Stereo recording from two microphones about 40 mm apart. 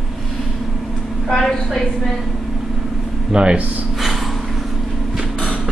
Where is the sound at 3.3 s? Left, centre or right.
Right.